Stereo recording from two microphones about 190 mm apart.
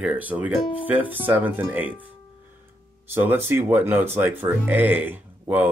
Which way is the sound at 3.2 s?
10° right (ahead or behind).